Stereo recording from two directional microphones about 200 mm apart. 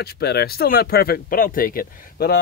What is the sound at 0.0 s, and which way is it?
Speech, 55° left (ahead or behind).